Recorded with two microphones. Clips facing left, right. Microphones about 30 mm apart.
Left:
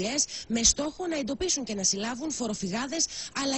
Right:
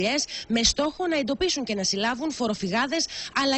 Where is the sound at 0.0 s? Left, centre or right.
Right.